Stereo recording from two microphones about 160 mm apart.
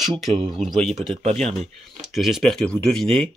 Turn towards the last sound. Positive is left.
turn(degrees=0)  # may be behind; listen again after turning